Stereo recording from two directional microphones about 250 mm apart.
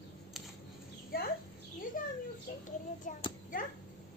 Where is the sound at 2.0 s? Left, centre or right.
Left.